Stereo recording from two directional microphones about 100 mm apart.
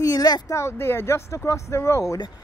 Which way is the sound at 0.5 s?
25° left (ahead or behind).